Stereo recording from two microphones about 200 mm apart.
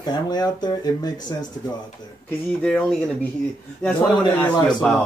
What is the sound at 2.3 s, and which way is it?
Speech, 5° left (ahead or behind).